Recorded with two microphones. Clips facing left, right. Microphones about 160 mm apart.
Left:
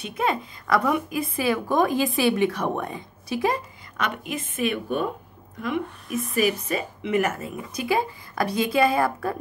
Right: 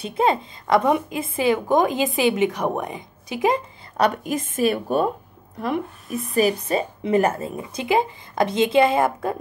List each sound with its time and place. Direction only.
0.0 s a woman's voice: 30° right (ahead or behind)
3.9 s a woman's voice: 40° right (ahead or behind)
6.3 s a woman's voice: 30° right (ahead or behind)